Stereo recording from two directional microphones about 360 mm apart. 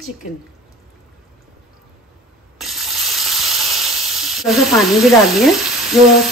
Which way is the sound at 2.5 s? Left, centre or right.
Centre.